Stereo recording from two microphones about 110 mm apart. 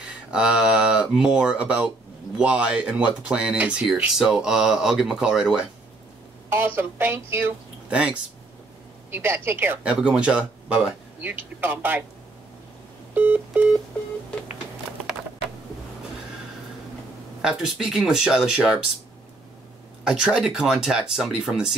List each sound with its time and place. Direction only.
0.0 s speech: 10° right (ahead or behind)
6.5 s speech: 20° right (ahead or behind)
9.1 s speech: 20° right (ahead or behind)
13.1 s telephone: 15° right (ahead or behind)
17.4 s speech: 5° right (ahead or behind)
20.1 s speech: 5° right (ahead or behind)